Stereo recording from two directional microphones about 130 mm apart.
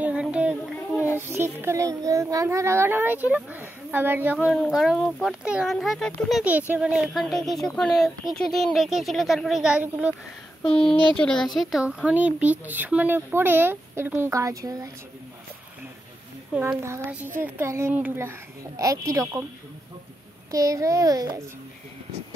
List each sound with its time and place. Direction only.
0.0 s child singing: 10° right (ahead or behind)
1.1 s speech: 20° right (ahead or behind)
4.5 s speech: centre (ahead or behind)
6.4 s speech: 10° right (ahead or behind)
10.6 s speech: 5° left (ahead or behind)
11.7 s speech: 10° right (ahead or behind); by 14.9 s 25° right (ahead or behind)
16.6 s speech: 20° right (ahead or behind)
20.5 s speech: 25° right (ahead or behind)